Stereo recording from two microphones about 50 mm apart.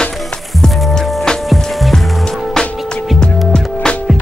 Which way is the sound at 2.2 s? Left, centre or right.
Centre.